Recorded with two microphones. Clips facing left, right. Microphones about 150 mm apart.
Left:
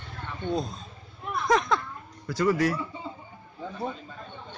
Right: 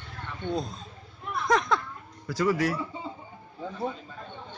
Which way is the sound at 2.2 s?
5° right (ahead or behind).